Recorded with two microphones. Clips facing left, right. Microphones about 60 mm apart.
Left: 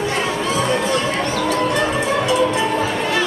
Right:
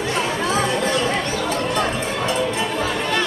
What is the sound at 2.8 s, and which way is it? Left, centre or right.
Music, centre.